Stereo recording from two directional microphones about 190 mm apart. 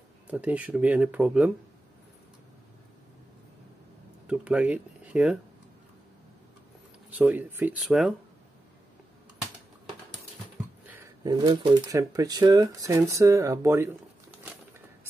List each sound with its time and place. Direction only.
0.3 s speech: 5° right (ahead or behind)
4.3 s speech: 5° right (ahead or behind)
7.1 s speech: 10° right (ahead or behind)
11.2 s speech: 25° right (ahead or behind)